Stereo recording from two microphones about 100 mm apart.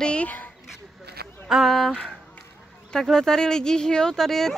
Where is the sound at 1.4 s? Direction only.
Centre (ahead or behind).